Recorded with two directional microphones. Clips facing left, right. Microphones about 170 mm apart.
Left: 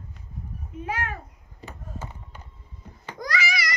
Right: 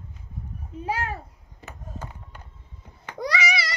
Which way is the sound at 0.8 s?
35° right (ahead or behind).